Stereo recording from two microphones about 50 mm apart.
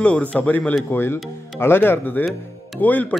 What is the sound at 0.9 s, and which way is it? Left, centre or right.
Speech, left.